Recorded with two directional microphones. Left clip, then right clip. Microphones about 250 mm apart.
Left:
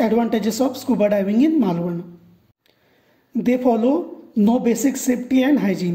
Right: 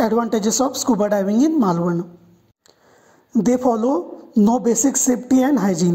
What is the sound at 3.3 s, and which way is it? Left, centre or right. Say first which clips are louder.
Speech: right 1 dB; centre.